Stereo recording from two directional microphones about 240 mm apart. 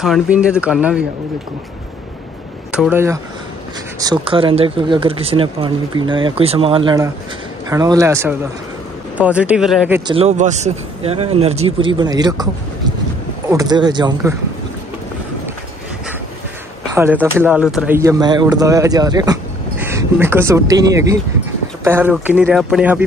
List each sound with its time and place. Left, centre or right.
0.0 s speech: centre
2.7 s speech: centre
10.1 s speech: right
13.5 s speech: centre
16.9 s speech: centre